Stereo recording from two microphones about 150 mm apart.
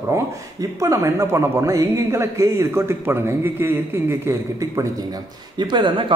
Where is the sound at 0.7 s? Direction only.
20° right (ahead or behind).